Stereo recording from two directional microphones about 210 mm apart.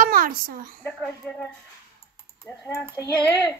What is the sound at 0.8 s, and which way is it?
Speech, 5° left (ahead or behind).